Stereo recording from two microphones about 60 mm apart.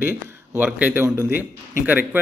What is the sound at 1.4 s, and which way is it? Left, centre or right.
Speech, right.